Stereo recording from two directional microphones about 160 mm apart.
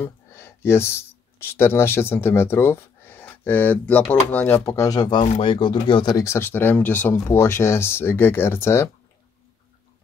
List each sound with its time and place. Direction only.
0.0 s a sound: 15° left (ahead or behind)
1.4 s speech: 15° left (ahead or behind)
5.2 s speech: 40° left (ahead or behind)
6.1 s speech: 15° left (ahead or behind)